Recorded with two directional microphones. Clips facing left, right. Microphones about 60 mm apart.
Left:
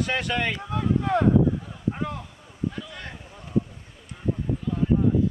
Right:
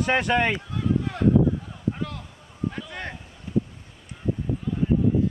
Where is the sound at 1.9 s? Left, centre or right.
Left.